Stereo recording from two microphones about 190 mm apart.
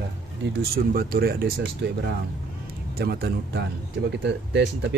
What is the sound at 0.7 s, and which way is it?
Speech, 50° right (ahead or behind).